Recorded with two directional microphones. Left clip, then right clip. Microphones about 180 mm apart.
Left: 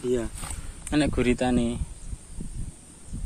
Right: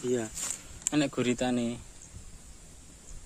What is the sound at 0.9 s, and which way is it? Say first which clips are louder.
Speech: left 5 dB; 5° right (ahead or behind).